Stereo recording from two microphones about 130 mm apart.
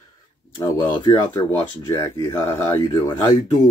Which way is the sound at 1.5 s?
15° left (ahead or behind).